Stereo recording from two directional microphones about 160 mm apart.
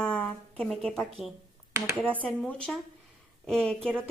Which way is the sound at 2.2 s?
10° left (ahead or behind).